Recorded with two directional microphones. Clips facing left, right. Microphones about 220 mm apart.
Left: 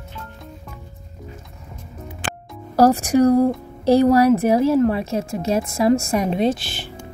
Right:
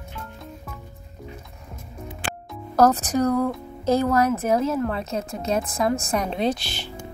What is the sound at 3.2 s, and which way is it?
Speech, 35° left (ahead or behind).